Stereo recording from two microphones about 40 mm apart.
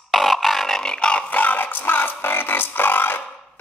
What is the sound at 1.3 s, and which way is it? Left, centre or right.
Music, left.